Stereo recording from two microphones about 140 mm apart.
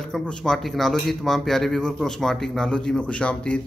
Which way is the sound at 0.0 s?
5° left (ahead or behind).